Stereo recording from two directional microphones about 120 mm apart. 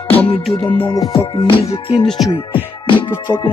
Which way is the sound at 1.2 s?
45° left (ahead or behind).